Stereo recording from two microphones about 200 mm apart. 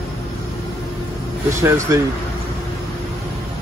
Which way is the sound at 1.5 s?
15° right (ahead or behind).